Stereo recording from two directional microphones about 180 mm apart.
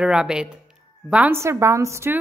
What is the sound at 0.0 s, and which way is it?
A woman's voice, 5° right (ahead or behind).